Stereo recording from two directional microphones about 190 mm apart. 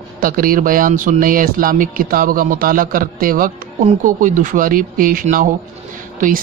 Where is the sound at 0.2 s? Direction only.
50° right (ahead or behind).